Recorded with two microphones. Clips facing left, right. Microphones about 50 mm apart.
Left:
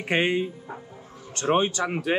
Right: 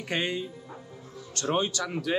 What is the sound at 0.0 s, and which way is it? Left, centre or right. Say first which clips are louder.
A man's voice: left 7 dB; left.